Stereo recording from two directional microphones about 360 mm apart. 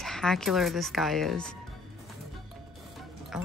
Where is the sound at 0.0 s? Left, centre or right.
Centre.